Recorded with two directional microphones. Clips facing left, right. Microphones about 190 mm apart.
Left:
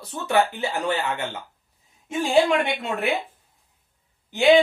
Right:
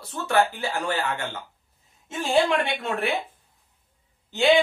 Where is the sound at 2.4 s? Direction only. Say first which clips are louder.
Left 2 dB; 20° left (ahead or behind).